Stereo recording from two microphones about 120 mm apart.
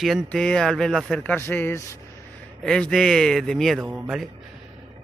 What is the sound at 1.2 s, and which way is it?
Speech, 15° left (ahead or behind).